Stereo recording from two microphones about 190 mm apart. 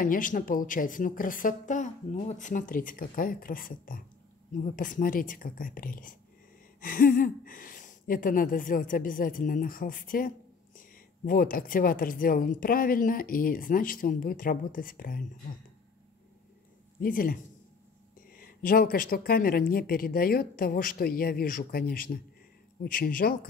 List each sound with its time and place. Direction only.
0.0 s a woman's voice: 45° left (ahead or behind)
17.0 s a woman's voice: 50° left (ahead or behind)